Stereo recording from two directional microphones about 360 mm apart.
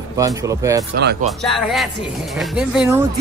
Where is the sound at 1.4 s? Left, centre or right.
Centre.